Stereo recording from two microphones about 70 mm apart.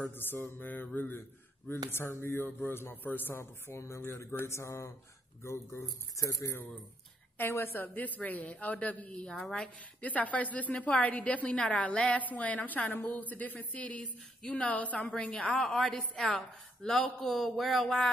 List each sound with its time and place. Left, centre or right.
0.0 s a woman's voice: left
6.5 s a woman's voice: left; by 9.7 s centre
10.0 s a woman's voice: left
15.0 s speech: centre